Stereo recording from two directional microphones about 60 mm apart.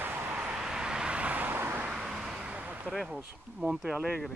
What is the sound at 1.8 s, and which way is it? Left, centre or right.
Vehicle, centre.